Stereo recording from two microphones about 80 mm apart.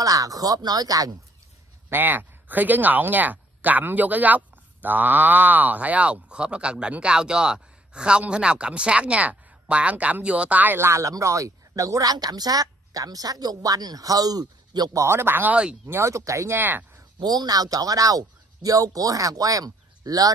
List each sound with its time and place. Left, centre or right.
0.0 s speech: right
1.9 s speech: right
14.9 s speech: right
15.9 s speech: right
16.5 s speech: right
17.2 s speech: right